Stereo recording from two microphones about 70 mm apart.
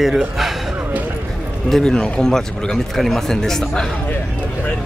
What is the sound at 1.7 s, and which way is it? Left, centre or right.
A man's voice, centre.